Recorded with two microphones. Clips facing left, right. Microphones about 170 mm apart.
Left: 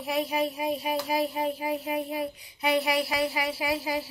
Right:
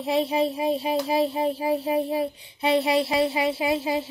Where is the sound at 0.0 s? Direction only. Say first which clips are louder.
Right 5 dB; 25° right (ahead or behind).